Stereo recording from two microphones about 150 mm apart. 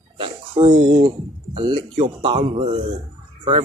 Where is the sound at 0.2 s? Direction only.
35° right (ahead or behind).